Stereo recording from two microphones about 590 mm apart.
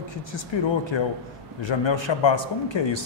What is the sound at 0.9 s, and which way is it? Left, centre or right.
A man's voice, left.